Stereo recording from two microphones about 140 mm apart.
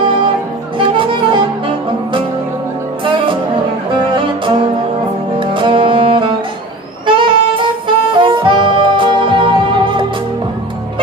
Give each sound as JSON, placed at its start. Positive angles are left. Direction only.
{"t": 0.7, "sound": "music", "side_deg": -35}
{"t": 3.9, "sound": "music", "side_deg": -35}
{"t": 7.1, "sound": "saxophone", "side_deg": -35}